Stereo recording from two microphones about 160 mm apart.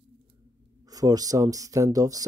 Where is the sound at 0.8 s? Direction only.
25° right (ahead or behind).